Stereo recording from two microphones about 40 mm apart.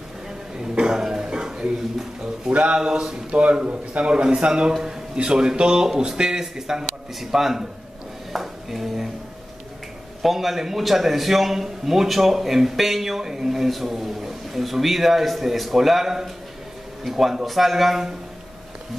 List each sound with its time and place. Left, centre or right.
0.6 s throat clearing: centre
2.7 s speech: centre
3.3 s a man's voice: right; by 7.6 s centre
8.3 s a sound: centre
10.2 s a man's voice: centre